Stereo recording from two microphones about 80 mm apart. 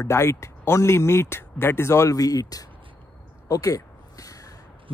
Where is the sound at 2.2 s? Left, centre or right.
Left.